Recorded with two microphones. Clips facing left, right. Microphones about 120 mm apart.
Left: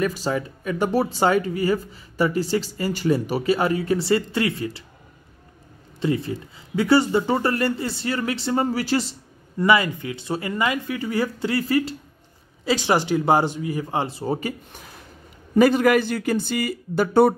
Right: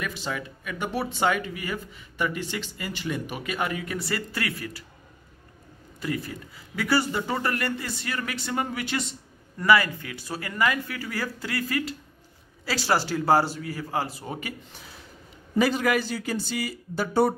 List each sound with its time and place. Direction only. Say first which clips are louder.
0.0 s speech: left 8 dB; 40° left (ahead or behind)
5.9 s speech: left 7 dB; 25° left (ahead or behind)
9.6 s speech: left 2 dB; 20° left (ahead or behind)
14.7 s a sound: left 3 dB; 50° left (ahead or behind)
15.5 s a man's voice: left 7 dB; 50° left (ahead or behind)